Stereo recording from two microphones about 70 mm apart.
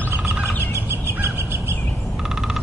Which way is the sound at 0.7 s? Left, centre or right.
Right.